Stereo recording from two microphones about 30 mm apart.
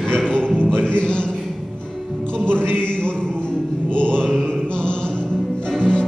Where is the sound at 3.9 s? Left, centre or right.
Left.